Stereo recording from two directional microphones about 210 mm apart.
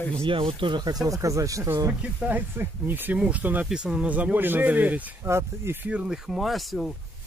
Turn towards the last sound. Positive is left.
turn(degrees=0)  # may be behind; listen again after turning